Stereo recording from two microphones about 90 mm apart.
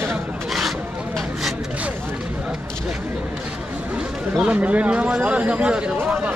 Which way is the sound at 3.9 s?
15° right (ahead or behind).